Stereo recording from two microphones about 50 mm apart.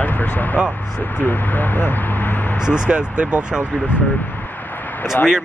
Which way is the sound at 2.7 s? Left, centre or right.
Centre.